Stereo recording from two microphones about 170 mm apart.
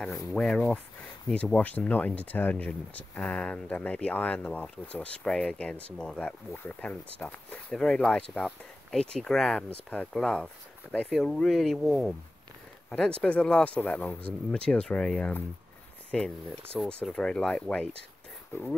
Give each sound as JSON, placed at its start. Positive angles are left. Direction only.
{"t": 0.0, "sound": "speech", "side_deg": 15}
{"t": 0.3, "sound": "speech", "side_deg": 5}